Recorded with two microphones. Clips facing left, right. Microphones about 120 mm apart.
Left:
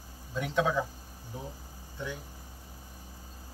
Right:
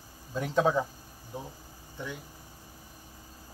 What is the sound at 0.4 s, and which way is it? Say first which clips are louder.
Speech: right 3 dB; 35° right (ahead or behind).